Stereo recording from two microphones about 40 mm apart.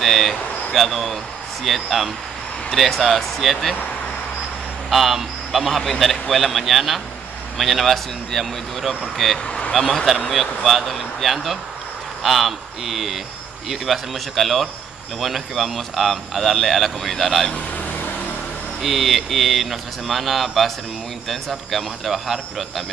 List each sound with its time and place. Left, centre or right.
0.0 s vehicle: centre
0.7 s speech: centre
4.8 s speech: centre
18.8 s speech: centre